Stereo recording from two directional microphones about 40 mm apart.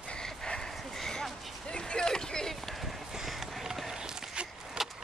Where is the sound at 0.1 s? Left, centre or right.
Centre.